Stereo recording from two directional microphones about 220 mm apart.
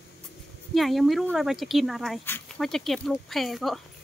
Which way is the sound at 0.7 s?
Centre (ahead or behind).